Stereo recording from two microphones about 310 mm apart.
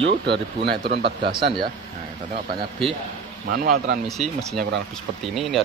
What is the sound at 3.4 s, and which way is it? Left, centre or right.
Speech, right.